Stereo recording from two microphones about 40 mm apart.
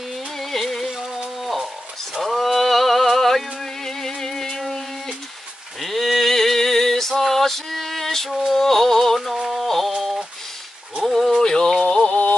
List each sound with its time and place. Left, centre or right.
0.4 s music: centre
2.2 s music: centre
5.8 s a sound: centre
8.3 s music: centre
11.1 s a sound: centre
11.4 s music: centre
12.1 s music: left